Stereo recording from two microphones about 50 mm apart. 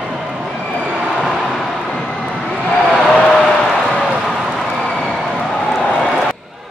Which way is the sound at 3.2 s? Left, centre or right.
Centre.